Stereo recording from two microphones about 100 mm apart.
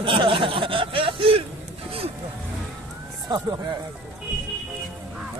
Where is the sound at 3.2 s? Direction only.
45° right (ahead or behind).